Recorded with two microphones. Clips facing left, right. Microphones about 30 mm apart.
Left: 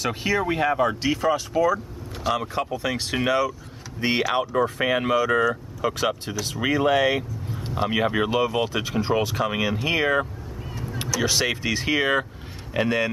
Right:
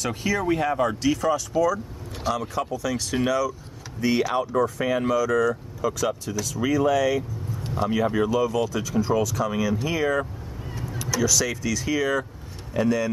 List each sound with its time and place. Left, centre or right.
0.0 s speech: left
2.6 s speech: left